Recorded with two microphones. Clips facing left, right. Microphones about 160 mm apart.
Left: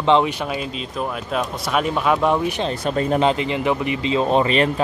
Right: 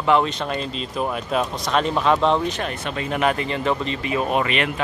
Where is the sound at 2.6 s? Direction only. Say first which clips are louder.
Left 6 dB; 40° left (ahead or behind).